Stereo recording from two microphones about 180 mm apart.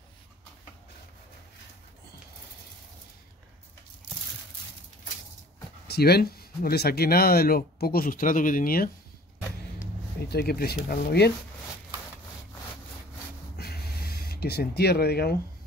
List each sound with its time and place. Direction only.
5.9 s speech: 60° left (ahead or behind)
10.2 s speech: 60° left (ahead or behind)
13.6 s a sound: 60° left (ahead or behind)